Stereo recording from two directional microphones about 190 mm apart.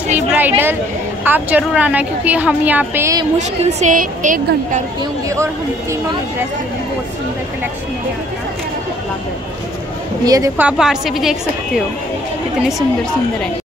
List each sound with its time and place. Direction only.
0.1 s a woman's voice: 10° right (ahead or behind)
3.3 s a woman's voice: 40° right (ahead or behind)
5.3 s a woman's voice: 15° right (ahead or behind)
10.2 s a woman's voice: 20° right (ahead or behind)
10.6 s a woman's voice: 5° right (ahead or behind)